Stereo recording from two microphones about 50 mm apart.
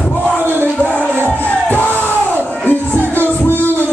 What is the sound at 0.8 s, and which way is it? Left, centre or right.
Music, left.